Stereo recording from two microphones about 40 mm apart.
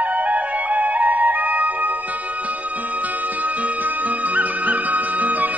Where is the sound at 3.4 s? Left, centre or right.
Right.